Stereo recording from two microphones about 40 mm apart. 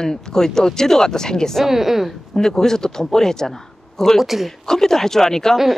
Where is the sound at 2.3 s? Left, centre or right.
Centre.